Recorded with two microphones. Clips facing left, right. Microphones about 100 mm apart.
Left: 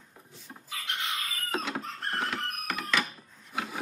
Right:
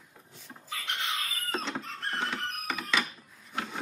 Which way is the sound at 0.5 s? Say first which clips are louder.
Even; 10° left (ahead or behind).